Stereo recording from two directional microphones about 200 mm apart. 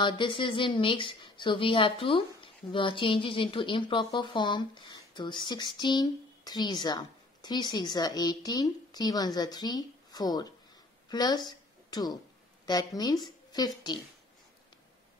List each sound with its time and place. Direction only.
0.0 s a woman's voice: 25° left (ahead or behind)